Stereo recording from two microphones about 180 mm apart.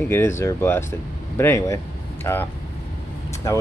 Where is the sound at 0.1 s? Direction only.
15° left (ahead or behind).